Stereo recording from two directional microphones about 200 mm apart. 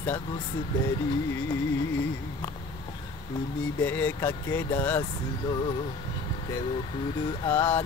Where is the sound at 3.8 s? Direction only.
10° left (ahead or behind).